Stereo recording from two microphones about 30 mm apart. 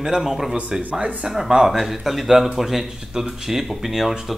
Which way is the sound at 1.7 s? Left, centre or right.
Centre.